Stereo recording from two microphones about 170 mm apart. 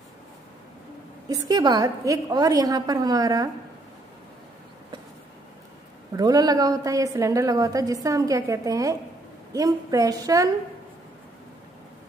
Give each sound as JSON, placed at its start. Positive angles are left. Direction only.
{"t": 1.5, "sound": "a woman's voice", "side_deg": -25}
{"t": 6.1, "sound": "a woman's voice", "side_deg": -20}